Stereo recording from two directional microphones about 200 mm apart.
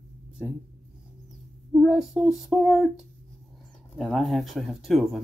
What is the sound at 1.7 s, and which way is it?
Speech, centre (ahead or behind).